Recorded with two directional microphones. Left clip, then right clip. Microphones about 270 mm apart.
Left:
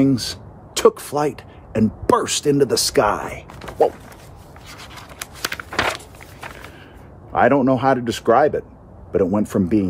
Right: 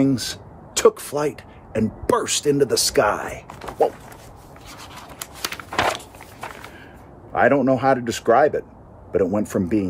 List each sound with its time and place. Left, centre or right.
0.0 s speech: centre
4.6 s a sound: centre
7.3 s speech: centre